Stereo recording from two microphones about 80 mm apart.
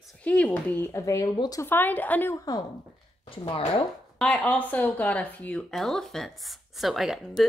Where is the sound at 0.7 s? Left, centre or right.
Left.